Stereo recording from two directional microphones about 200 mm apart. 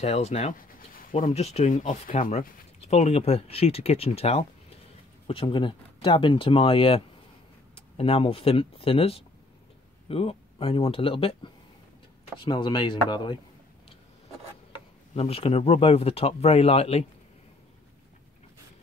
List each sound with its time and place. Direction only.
0.0 s speech: 35° left (ahead or behind)
15.1 s speech: 30° left (ahead or behind)